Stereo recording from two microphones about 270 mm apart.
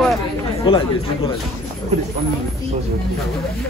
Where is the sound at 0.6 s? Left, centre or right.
Centre.